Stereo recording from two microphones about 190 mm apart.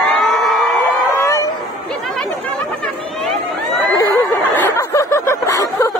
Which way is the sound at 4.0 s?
10° left (ahead or behind).